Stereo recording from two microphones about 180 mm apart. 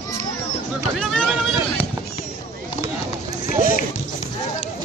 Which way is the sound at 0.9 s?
5° left (ahead or behind).